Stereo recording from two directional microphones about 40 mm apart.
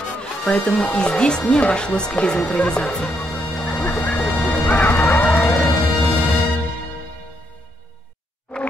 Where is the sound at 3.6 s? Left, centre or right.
Left.